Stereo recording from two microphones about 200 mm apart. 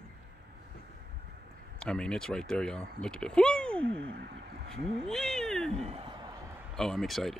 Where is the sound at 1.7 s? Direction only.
5° left (ahead or behind).